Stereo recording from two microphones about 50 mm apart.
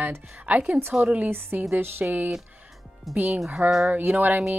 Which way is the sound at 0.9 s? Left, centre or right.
Centre.